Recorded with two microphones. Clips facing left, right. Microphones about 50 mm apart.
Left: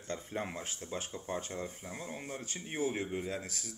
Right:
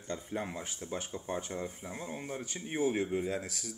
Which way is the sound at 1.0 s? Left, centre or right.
Right.